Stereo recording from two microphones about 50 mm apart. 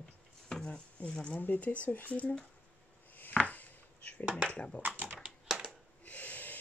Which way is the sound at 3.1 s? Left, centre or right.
Left.